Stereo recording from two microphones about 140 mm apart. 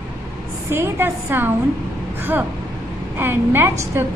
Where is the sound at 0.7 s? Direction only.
15° right (ahead or behind).